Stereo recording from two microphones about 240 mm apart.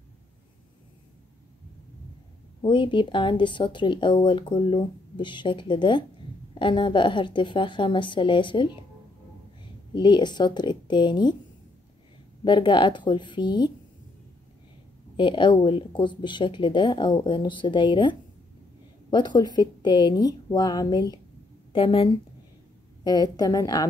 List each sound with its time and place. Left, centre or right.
2.6 s speech: centre
9.9 s speech: centre
12.4 s speech: centre
15.1 s speech: centre